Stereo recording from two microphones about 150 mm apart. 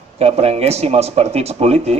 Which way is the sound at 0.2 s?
40° right (ahead or behind).